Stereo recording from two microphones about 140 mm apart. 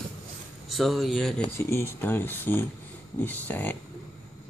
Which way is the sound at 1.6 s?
15° left (ahead or behind).